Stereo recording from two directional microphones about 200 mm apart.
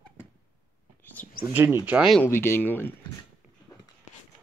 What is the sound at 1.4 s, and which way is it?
Speech, 10° right (ahead or behind).